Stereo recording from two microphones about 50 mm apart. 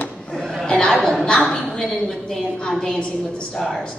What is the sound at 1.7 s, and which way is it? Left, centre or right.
A woman's voice, centre.